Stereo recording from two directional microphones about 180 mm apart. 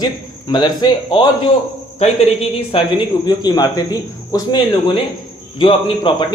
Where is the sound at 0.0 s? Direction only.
25° left (ahead or behind).